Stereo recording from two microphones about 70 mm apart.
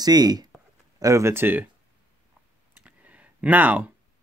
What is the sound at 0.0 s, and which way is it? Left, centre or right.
Speech, right.